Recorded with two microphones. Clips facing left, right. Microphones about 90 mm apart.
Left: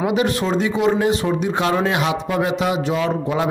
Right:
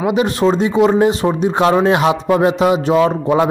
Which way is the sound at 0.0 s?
25° right (ahead or behind).